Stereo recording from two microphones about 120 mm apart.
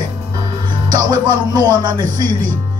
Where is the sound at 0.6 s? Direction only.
35° right (ahead or behind).